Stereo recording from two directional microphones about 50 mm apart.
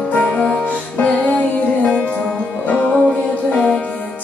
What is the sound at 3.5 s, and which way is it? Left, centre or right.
Music, left.